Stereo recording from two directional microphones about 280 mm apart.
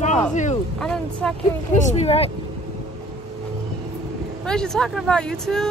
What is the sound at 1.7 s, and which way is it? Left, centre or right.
Speech, left.